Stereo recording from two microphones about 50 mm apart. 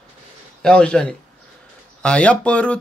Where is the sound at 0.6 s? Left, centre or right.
Centre.